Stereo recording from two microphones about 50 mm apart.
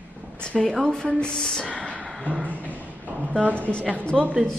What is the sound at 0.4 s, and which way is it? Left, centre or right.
Speech, centre.